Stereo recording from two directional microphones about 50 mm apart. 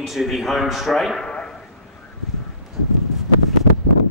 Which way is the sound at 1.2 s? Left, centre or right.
Centre.